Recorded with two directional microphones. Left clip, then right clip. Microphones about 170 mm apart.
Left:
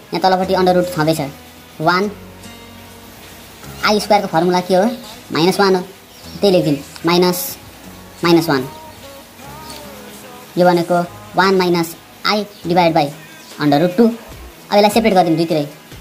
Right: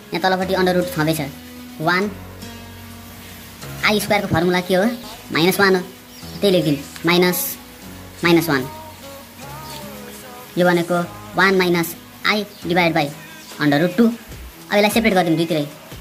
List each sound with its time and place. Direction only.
0.1 s a woman's voice: centre (ahead or behind)
4.1 s a woman's voice: 5° right (ahead or behind)
10.5 s a woman's voice: centre (ahead or behind)